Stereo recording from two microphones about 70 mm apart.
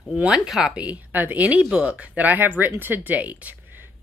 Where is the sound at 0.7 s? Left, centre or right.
Right.